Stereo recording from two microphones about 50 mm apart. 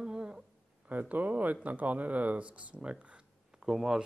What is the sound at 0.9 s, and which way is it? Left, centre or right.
Speech, right.